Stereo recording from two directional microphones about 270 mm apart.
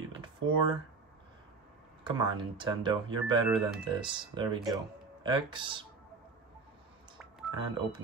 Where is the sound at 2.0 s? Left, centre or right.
Centre.